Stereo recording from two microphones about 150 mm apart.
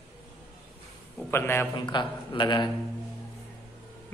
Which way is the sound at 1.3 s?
15° left (ahead or behind).